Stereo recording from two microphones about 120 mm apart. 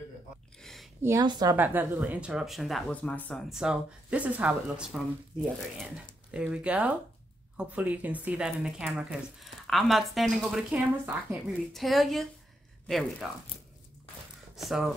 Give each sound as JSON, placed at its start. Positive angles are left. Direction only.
{"t": 0.6, "sound": "a sound", "side_deg": 5}
{"t": 1.2, "sound": "a woman's voice", "side_deg": -40}
{"t": 1.5, "sound": "speech", "side_deg": -15}
{"t": 2.9, "sound": "speech", "side_deg": 10}
{"t": 3.3, "sound": "speech", "side_deg": -5}
{"t": 6.3, "sound": "a woman's voice", "side_deg": -10}
{"t": 14.5, "sound": "speech", "side_deg": 0}